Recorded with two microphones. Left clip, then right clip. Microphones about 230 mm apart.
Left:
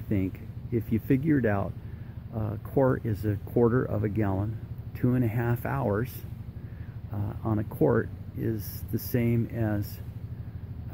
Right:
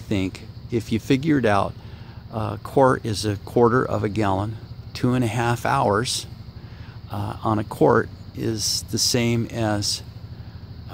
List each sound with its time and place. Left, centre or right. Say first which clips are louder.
0.1 s speech: right 6 dB; centre
7.1 s speech: right 9 dB; centre